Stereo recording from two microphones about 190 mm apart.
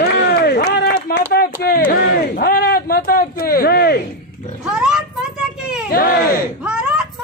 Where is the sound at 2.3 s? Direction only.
55° left (ahead or behind).